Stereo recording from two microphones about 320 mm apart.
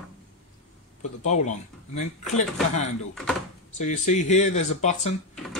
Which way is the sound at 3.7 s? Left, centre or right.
Left.